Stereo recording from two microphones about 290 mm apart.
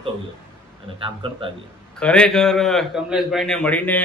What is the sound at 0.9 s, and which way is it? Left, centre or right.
Speech, centre.